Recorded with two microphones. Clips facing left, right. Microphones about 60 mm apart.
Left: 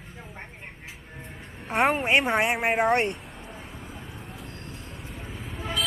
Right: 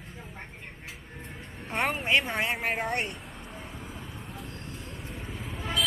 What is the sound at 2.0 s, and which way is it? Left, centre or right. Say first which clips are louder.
Speech: left 4 dB; left.